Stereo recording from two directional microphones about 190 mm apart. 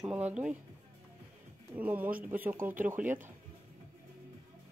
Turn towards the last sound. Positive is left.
turn(degrees=-10)  # may be behind; listen again after turning